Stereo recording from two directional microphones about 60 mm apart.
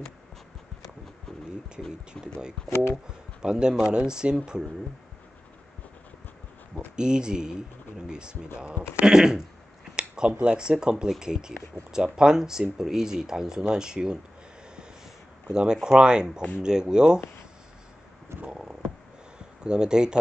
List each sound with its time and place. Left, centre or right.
2.1 s speech: centre
2.7 s speech: left
3.4 s speech: centre
7.0 s speech: centre
15.5 s speech: centre
18.4 s speech: centre
19.3 s a sound: centre